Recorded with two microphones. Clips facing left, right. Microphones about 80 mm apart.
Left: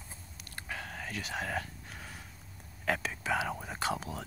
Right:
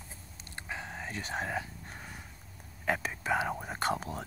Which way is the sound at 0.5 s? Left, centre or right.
Centre.